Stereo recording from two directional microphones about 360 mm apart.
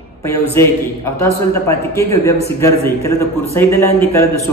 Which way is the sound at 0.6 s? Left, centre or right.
Centre.